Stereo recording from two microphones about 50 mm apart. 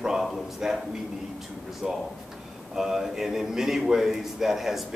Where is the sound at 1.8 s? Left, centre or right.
Centre.